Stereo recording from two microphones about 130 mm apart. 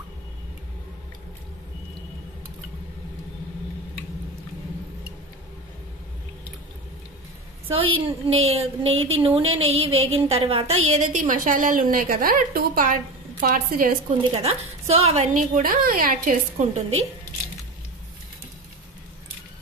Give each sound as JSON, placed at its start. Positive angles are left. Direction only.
{"t": 7.6, "sound": "a woman's voice", "side_deg": -45}
{"t": 14.1, "sound": "a woman's voice", "side_deg": -50}
{"t": 15.3, "sound": "a woman's voice", "side_deg": -90}